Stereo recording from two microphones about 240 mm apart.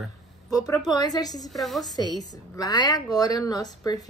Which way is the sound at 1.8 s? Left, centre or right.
Centre.